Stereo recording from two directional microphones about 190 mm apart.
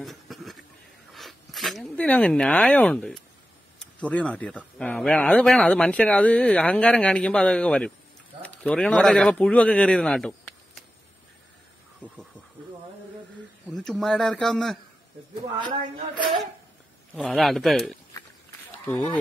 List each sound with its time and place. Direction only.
0.0 s a sound: centre (ahead or behind)
1.1 s speech: centre (ahead or behind)
13.7 s speech: centre (ahead or behind)
15.5 s speech: 25° right (ahead or behind)
17.3 s speech: centre (ahead or behind)